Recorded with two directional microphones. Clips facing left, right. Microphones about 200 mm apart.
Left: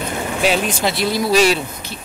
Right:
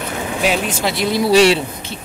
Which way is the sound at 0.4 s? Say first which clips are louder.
Left 1 dB; 10° right (ahead or behind).